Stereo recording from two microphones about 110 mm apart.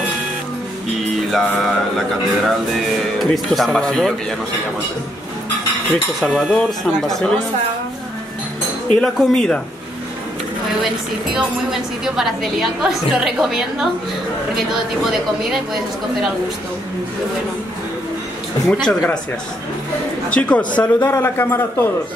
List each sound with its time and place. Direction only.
1.3 s a woman's voice: centre (ahead or behind)
6.5 s a woman's voice: 5° left (ahead or behind)
8.9 s speech: 5° left (ahead or behind)
11.3 s a woman's voice: 5° right (ahead or behind)
18.7 s a woman's voice: 5° left (ahead or behind)
20.2 s speech: 10° left (ahead or behind)